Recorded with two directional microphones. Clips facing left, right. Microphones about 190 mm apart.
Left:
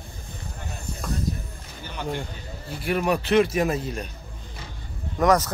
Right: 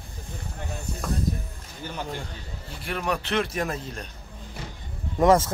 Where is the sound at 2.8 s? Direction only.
10° left (ahead or behind).